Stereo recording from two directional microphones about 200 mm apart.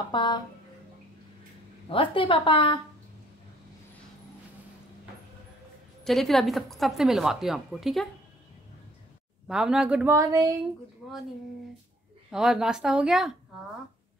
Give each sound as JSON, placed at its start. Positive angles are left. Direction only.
{"t": 0.1, "sound": "a woman's voice", "side_deg": 25}
{"t": 1.9, "sound": "a woman's voice", "side_deg": 25}
{"t": 6.0, "sound": "a woman's voice", "side_deg": 0}
{"t": 9.5, "sound": "a woman's voice", "side_deg": -5}
{"t": 10.1, "sound": "speech", "side_deg": -15}
{"t": 12.3, "sound": "a woman's voice", "side_deg": 0}